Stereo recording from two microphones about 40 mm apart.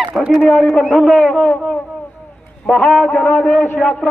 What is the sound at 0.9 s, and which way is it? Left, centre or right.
Speech, centre.